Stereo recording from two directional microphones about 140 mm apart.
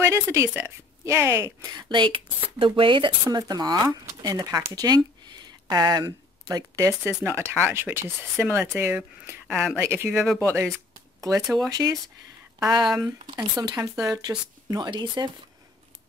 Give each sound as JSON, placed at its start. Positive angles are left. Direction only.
{"t": 0.0, "sound": "speech", "side_deg": -20}
{"t": 9.5, "sound": "speech", "side_deg": 0}
{"t": 9.8, "sound": "speech", "side_deg": -20}
{"t": 10.1, "sound": "speech", "side_deg": 0}
{"t": 10.4, "sound": "speech", "side_deg": -20}
{"t": 11.4, "sound": "speech", "side_deg": 0}
{"t": 11.7, "sound": "speech", "side_deg": -25}
{"t": 12.8, "sound": "speech", "side_deg": 0}
{"t": 13.4, "sound": "speech", "side_deg": -25}